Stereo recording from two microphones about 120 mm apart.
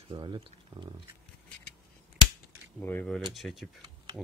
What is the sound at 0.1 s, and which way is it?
Speech, 40° right (ahead or behind).